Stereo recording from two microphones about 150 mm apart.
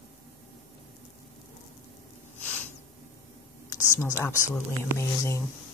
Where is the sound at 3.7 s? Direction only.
20° left (ahead or behind).